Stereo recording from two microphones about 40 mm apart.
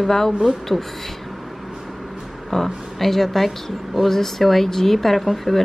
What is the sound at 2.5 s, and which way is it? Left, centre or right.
A woman's voice, centre.